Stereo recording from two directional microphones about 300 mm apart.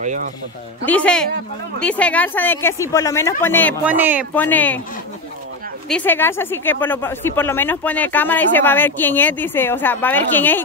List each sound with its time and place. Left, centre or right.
0.0 s speech: right
0.8 s speech: centre
3.8 s speech: centre
4.3 s speech: centre
5.9 s speech: centre